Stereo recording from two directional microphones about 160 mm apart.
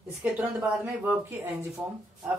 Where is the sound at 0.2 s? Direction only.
5° right (ahead or behind).